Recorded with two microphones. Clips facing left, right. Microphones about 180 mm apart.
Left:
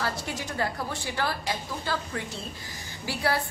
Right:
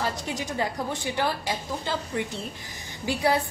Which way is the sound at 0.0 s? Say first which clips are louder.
Right 2 dB; 20° right (ahead or behind).